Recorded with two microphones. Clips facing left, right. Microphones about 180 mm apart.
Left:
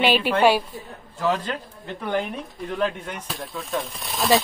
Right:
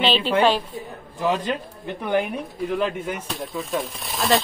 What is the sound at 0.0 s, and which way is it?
Speech, 10° left (ahead or behind).